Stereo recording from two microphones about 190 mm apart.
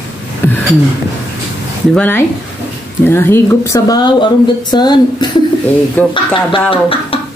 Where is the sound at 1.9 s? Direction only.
10° left (ahead or behind).